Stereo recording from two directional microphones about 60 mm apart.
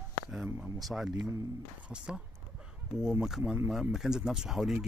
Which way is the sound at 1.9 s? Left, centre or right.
Centre.